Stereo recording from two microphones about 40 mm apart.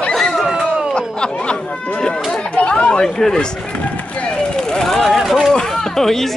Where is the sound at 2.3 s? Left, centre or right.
Left.